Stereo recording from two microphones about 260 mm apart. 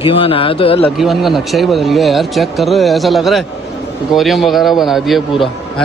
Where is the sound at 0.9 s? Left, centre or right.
Centre.